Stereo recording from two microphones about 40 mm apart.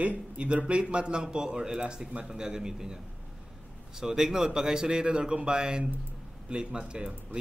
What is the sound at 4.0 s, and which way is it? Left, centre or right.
A man's voice, centre.